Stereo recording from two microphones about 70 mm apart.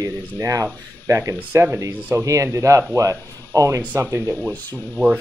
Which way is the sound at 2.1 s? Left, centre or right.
Right.